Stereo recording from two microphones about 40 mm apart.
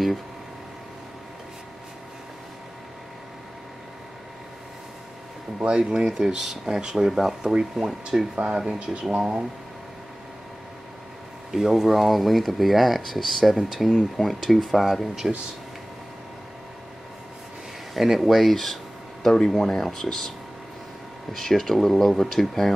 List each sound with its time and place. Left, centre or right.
5.6 s speech: right
6.0 s speech: centre
11.5 s speech: centre
17.9 s speech: centre